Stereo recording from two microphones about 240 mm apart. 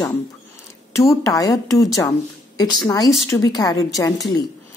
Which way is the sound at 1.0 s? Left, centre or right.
Centre.